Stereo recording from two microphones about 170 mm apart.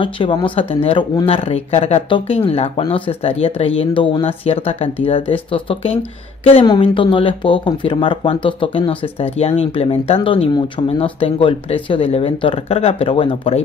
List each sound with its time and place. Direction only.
0.0 s speech: 30° left (ahead or behind)